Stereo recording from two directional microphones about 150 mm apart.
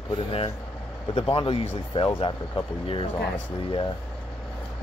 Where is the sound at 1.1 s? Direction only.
35° left (ahead or behind).